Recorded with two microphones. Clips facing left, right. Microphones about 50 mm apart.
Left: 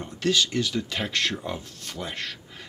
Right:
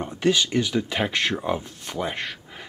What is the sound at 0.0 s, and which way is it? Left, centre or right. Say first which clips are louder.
Speech: right 3 dB; centre.